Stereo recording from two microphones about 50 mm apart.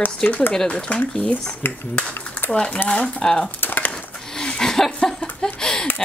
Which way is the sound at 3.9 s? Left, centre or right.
Centre.